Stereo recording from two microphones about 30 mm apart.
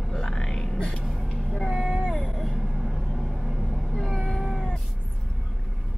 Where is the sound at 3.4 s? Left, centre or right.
Centre.